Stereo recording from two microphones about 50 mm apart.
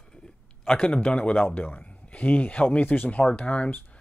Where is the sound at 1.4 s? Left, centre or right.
Left.